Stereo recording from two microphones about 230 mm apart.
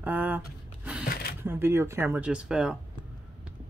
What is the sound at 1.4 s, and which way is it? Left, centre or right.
Speech, centre.